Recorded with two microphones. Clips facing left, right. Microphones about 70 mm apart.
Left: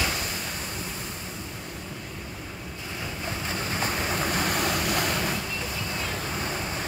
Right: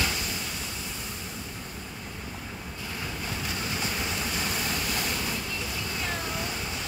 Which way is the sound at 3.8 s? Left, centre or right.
Left.